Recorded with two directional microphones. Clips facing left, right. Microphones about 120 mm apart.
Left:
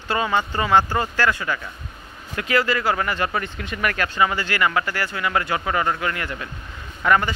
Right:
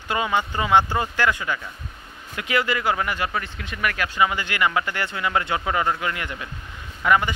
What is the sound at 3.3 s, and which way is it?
Speech, centre (ahead or behind).